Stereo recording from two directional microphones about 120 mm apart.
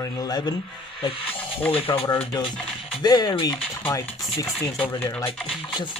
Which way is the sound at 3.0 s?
35° left (ahead or behind).